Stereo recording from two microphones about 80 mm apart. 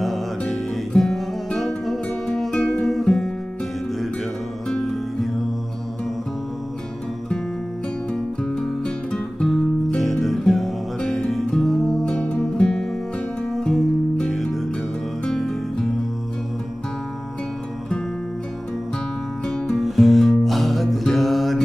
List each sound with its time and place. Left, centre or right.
0.4 s music: centre
4.6 s music: centre
8.1 s music: centre
19.4 s music: centre